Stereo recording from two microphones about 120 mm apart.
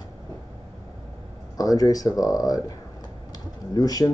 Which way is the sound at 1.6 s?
30° left (ahead or behind).